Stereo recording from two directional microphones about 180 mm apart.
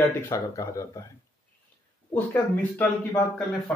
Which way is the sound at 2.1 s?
10° left (ahead or behind).